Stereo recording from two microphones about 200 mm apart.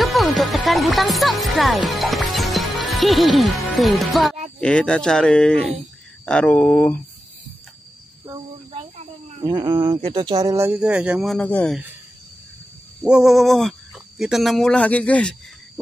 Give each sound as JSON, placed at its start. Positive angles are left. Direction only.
{"t": 0.0, "sound": "music", "side_deg": 0}
{"t": 3.7, "sound": "speech", "side_deg": 0}
{"t": 8.9, "sound": "speech", "side_deg": -25}
{"t": 11.3, "sound": "speech", "side_deg": 10}
{"t": 13.0, "sound": "speech", "side_deg": -5}